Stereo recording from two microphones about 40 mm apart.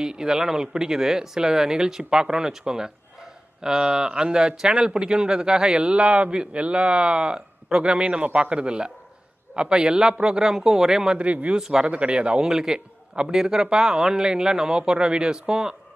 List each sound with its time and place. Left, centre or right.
0.0 s a man's voice: centre
11.1 s a man's voice: right
12.4 s a man's voice: centre